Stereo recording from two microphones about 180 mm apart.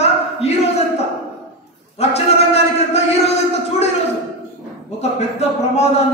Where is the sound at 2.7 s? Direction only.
35° left (ahead or behind).